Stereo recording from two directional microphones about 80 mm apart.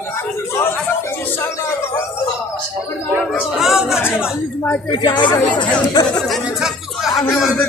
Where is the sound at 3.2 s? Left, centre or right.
Centre.